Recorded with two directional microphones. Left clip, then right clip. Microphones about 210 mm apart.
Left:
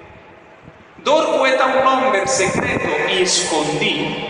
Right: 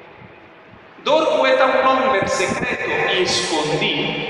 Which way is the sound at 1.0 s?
50° left (ahead or behind).